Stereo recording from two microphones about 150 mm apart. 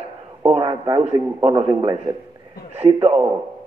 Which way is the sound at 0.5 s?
35° right (ahead or behind).